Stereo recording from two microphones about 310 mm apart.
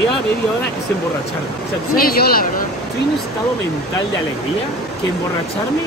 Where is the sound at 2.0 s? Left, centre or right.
Left.